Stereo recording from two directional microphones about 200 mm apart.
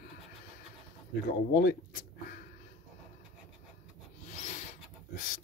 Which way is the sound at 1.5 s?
50° left (ahead or behind).